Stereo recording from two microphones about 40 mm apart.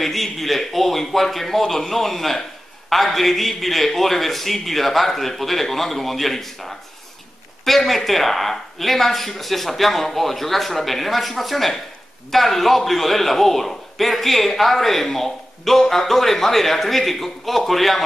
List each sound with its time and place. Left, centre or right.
0.0 s a man's voice: centre